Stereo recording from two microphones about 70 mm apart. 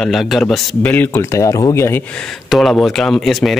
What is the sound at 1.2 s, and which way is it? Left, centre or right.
Speech, left.